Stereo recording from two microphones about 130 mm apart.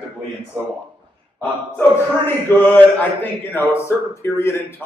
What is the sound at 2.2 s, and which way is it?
Speech, 15° left (ahead or behind).